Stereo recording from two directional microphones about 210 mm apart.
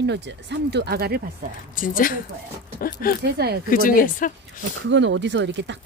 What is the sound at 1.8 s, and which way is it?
A woman's voice, 40° left (ahead or behind).